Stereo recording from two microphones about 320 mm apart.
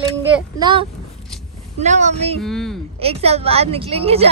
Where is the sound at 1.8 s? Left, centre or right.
Right.